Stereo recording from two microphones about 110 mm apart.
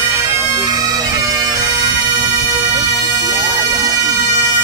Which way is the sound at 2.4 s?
25° right (ahead or behind).